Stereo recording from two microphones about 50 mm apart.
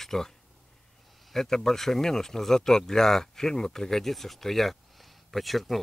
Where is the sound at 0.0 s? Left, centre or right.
Centre.